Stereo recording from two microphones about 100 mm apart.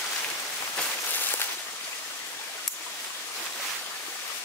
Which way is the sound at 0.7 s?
20° left (ahead or behind).